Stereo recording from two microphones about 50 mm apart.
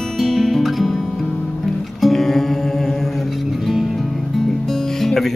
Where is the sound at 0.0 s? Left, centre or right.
Centre.